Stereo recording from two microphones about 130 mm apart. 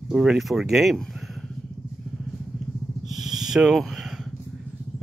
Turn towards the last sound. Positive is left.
turn(degrees=-5)  # may be behind; listen again after turning